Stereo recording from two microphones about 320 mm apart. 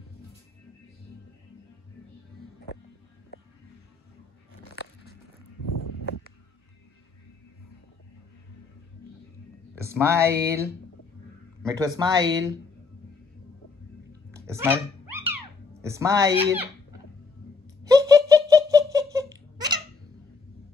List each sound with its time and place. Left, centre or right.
3.3 s music: left
6.1 s a sound: left
9.8 s music: centre
11.6 s speech: centre
14.3 s cat: centre
15.8 s speech: centre
17.8 s giggle: centre